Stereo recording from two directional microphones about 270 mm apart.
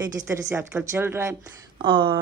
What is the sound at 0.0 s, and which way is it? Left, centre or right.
A woman's voice, centre.